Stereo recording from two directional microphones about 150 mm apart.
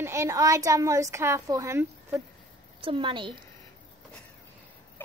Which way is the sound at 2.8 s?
35° right (ahead or behind).